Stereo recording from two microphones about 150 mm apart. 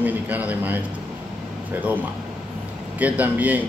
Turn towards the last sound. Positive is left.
turn(degrees=-10)  # may be behind; listen again after turning